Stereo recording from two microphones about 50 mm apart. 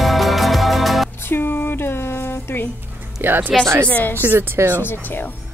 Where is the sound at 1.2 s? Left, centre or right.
Left.